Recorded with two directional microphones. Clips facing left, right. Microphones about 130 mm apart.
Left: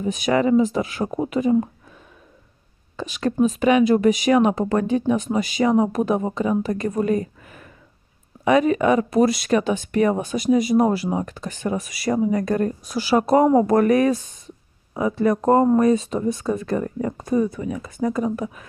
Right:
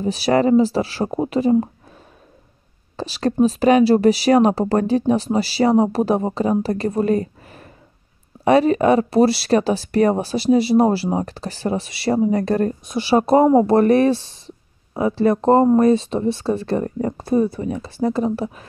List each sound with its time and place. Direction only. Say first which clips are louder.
0.0 s speech: right 3 dB; 35° right (ahead or behind)
3.0 s speech: right 3 dB; 35° right (ahead or behind)